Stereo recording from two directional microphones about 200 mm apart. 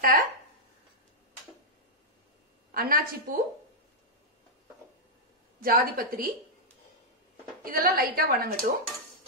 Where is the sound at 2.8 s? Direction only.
45° right (ahead or behind).